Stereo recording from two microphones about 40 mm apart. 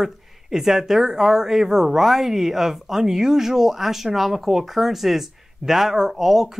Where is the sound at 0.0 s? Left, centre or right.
Centre.